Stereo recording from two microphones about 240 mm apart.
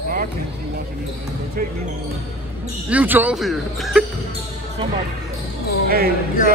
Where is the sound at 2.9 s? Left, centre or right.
Centre.